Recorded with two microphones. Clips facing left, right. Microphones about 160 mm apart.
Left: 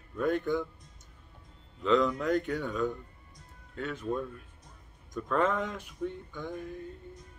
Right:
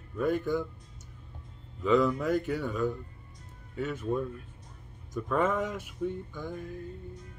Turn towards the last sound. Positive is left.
turn(degrees=-10)  # may be behind; listen again after turning